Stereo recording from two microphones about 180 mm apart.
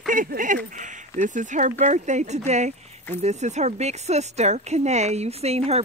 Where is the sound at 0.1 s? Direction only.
45° right (ahead or behind).